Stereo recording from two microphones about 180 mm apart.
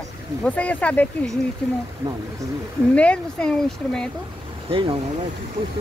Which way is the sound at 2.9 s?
5° left (ahead or behind).